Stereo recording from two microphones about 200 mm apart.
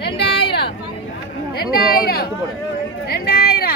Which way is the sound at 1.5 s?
50° left (ahead or behind).